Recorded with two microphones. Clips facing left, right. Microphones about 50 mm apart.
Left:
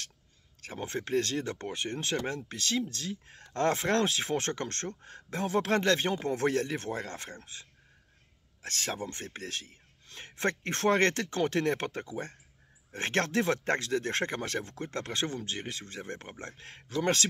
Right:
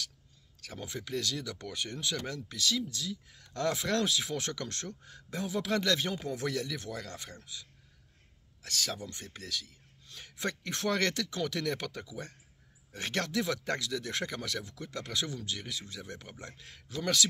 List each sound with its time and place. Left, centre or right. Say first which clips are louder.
0.6 s speech: left 5 dB; left
8.6 s speech: left 2 dB; left